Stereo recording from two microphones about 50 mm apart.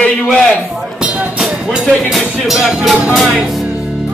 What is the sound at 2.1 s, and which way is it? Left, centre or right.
Speech, centre.